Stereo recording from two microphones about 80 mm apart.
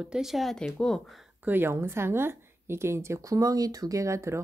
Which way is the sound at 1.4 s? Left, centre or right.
Right.